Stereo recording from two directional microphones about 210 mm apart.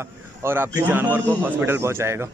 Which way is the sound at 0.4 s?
10° right (ahead or behind).